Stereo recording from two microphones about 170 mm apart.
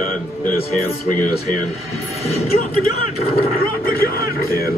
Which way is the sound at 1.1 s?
50° left (ahead or behind).